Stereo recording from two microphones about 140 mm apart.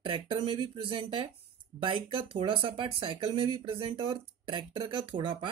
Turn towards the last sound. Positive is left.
turn(degrees=-35)  # may be behind; listen again after turning